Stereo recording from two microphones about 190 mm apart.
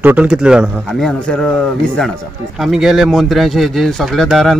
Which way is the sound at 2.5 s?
Centre (ahead or behind).